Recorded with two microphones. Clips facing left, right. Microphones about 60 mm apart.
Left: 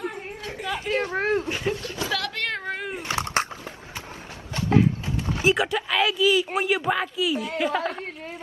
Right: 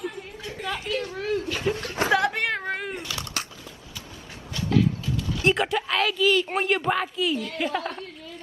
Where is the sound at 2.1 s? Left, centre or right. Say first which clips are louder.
Right 9 dB; right.